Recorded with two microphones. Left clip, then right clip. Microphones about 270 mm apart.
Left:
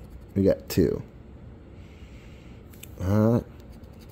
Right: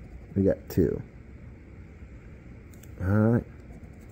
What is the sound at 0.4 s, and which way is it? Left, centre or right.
Speech, left.